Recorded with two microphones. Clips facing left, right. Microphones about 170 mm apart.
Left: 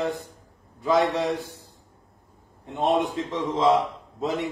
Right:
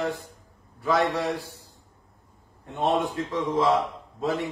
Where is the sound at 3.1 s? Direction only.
20° left (ahead or behind).